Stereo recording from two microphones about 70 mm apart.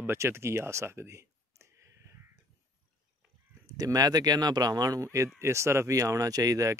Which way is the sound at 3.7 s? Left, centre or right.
Right.